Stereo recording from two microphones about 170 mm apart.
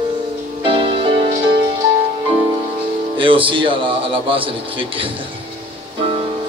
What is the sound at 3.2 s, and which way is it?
A man's voice, 30° right (ahead or behind).